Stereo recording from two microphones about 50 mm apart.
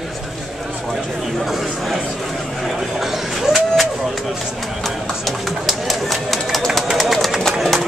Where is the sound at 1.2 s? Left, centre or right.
Centre.